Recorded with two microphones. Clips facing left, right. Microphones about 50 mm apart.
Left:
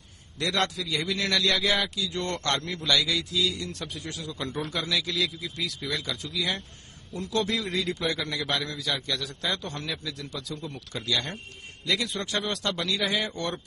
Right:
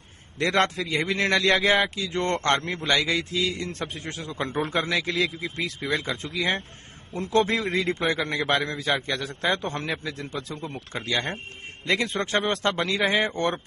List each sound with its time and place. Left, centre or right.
0.4 s a man's voice: right